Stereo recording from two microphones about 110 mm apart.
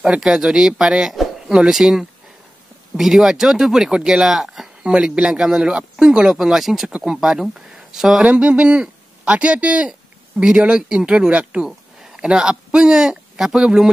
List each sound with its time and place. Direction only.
0.0 s speech: 5° right (ahead or behind)